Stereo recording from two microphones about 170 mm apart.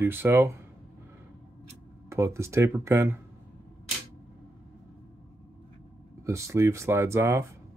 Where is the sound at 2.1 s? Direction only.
15° right (ahead or behind).